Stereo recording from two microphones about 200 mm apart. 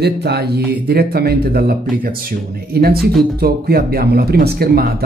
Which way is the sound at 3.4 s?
50° right (ahead or behind).